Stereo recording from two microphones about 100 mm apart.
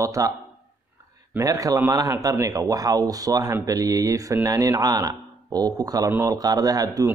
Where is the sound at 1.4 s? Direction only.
35° right (ahead or behind).